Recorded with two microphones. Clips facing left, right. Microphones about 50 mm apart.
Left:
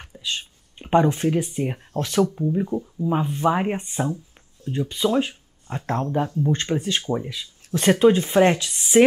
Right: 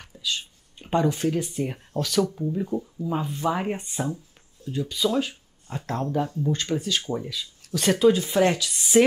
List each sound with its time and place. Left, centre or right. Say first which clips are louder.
0.0 s a sound: left 1 dB; left
2.0 s speech: left 3 dB; left
2.5 s speech: left 3 dB; centre
6.5 s speech: left 3 dB; left